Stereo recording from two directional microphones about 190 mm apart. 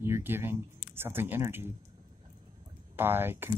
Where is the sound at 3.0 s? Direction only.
10° right (ahead or behind).